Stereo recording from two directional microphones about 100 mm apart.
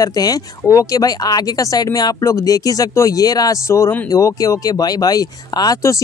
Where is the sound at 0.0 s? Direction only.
40° left (ahead or behind).